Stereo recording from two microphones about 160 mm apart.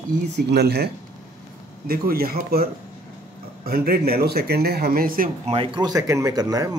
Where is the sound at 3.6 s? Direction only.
70° right (ahead or behind).